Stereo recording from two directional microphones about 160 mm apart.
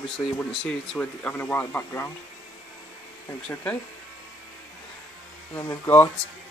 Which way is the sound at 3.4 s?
10° left (ahead or behind).